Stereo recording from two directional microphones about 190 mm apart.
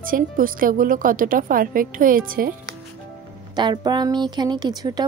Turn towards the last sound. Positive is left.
turn(degrees=-20)  # may be behind; listen again after turning